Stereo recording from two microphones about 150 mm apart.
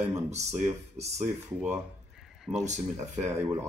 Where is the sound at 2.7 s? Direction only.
50° right (ahead or behind).